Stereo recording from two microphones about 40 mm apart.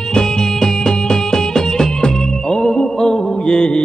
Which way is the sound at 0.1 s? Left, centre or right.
Centre.